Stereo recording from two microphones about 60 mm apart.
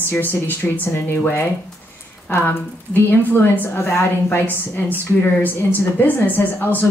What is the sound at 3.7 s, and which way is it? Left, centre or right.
A woman's voice, left.